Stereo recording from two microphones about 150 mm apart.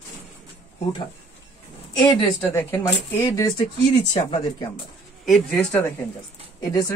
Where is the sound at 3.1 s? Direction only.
20° left (ahead or behind).